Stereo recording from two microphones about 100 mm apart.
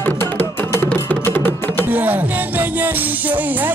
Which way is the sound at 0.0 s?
20° left (ahead or behind).